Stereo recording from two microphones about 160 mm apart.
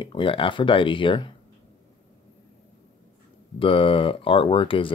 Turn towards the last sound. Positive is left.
turn(degrees=35)  # may be behind; listen again after turning